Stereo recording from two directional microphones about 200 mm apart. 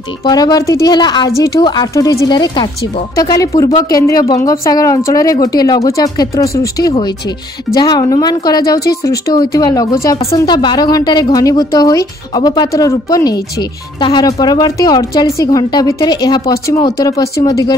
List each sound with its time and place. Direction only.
0.2 s speech: 20° left (ahead or behind)